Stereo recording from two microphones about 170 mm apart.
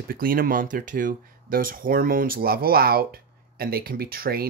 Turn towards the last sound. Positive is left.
turn(degrees=-60)  # may be behind; listen again after turning